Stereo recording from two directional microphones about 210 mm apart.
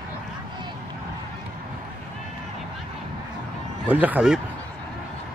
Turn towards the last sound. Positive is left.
turn(degrees=-5)  # may be behind; listen again after turning